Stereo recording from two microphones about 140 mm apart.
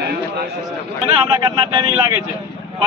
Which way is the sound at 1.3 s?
30° right (ahead or behind).